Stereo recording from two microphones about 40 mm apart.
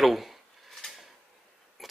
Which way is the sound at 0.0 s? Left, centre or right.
Centre.